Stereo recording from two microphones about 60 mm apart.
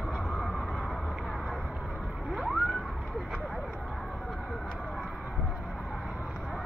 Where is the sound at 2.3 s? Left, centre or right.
Centre.